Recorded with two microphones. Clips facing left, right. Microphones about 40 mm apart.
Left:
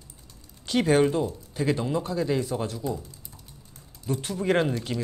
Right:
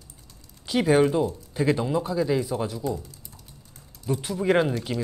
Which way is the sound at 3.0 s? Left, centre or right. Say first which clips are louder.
Right 1 dB; centre.